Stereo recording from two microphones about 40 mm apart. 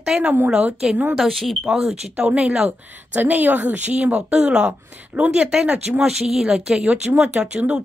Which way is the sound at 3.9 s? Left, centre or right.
Right.